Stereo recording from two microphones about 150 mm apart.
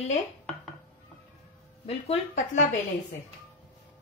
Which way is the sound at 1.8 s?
45° left (ahead or behind).